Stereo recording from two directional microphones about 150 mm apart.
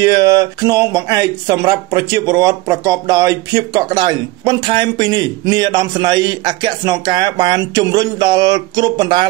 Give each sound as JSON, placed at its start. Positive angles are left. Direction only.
{"t": 0.0, "sound": "speech", "side_deg": -25}